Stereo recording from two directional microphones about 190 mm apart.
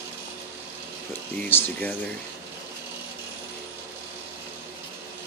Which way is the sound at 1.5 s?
10° left (ahead or behind).